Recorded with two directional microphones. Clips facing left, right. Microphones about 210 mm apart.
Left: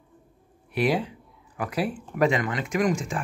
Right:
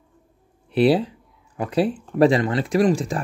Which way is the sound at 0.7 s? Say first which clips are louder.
Right 7 dB; 30° right (ahead or behind).